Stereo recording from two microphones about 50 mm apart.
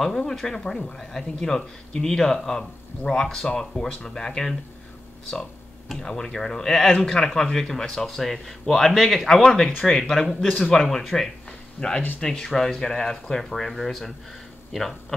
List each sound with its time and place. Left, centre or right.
0.2 s speech: centre
5.9 s speech: centre
12.2 s speech: centre